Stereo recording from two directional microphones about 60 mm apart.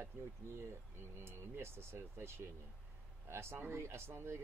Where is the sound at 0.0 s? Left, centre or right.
Right.